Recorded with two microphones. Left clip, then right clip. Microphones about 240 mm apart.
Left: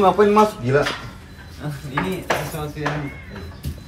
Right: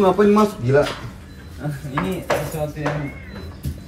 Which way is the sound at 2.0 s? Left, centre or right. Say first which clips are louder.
Right 3 dB; centre.